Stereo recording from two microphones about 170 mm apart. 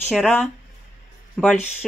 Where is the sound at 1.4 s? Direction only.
5° right (ahead or behind).